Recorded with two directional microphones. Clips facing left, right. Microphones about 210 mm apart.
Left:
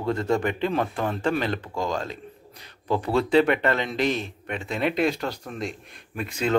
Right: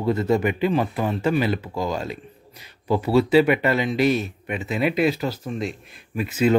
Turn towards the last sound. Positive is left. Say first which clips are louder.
# right 7 dB
turn(degrees=-5)  # may be behind; listen again after turning